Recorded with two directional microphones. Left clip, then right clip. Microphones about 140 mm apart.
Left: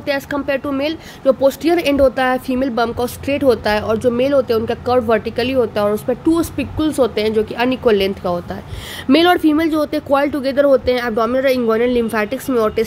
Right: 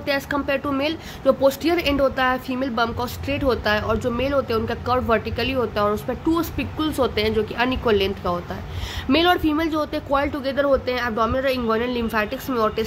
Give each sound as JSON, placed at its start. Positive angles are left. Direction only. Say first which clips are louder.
{"t": 0.0, "sound": "speech", "louder": "left 3 dB", "side_deg": 55}
{"t": 9.1, "sound": "speech", "louder": "left 6 dB", "side_deg": 60}